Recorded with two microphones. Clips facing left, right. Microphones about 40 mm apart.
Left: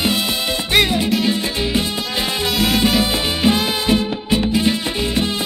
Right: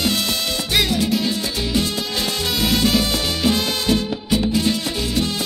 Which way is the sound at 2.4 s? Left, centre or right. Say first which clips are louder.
Left 3 dB; centre.